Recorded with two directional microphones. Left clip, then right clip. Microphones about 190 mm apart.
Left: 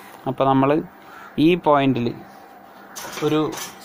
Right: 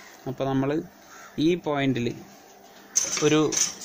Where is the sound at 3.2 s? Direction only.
25° right (ahead or behind).